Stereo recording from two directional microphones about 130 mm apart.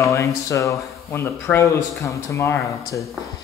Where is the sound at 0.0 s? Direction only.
25° left (ahead or behind).